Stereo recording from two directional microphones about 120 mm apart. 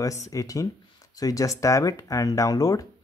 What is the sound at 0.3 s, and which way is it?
Speech, 30° left (ahead or behind).